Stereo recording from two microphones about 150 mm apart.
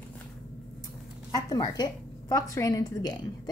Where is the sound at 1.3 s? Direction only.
25° left (ahead or behind).